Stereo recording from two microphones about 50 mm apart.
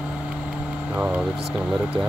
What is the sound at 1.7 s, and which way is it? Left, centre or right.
Speech, centre.